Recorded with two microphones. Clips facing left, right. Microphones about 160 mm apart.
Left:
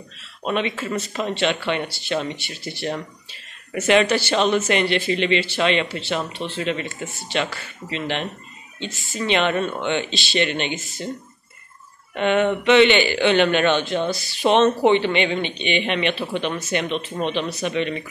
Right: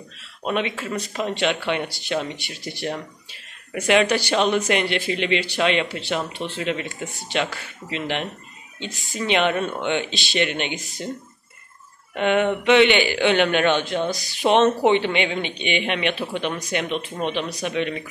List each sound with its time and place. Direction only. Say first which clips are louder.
0.4 s speech: left 1 dB; 5° right (ahead or behind)
1.1 s speech: even; 10° right (ahead or behind)
12.2 s speech: left 1 dB; 10° right (ahead or behind)